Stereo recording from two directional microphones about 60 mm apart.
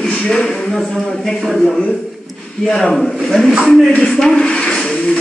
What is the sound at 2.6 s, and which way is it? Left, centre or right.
Speech, centre.